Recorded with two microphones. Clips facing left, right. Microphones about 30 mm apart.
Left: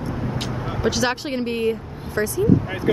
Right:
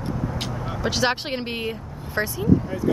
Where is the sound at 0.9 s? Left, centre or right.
Centre.